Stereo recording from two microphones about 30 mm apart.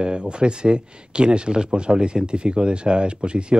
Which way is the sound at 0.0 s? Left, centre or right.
Right.